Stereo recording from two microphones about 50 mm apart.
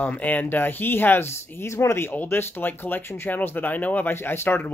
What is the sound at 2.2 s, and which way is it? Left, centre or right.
Speech, left.